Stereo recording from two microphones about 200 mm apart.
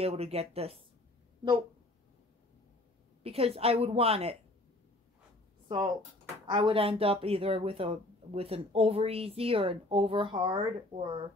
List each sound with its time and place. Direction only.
0.0 s speech: 30° right (ahead or behind)
3.3 s speech: 30° right (ahead or behind)
6.4 s speech: 25° right (ahead or behind)